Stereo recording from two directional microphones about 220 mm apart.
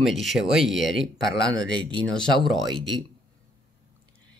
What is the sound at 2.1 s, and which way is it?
Speech, centre (ahead or behind).